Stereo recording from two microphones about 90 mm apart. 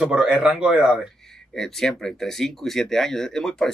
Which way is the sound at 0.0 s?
10° right (ahead or behind).